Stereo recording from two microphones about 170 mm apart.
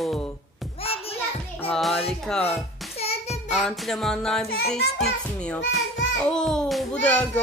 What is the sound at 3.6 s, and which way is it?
Speech, centre (ahead or behind).